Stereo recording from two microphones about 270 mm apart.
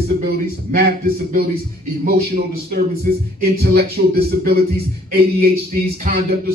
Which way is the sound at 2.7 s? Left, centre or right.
Right.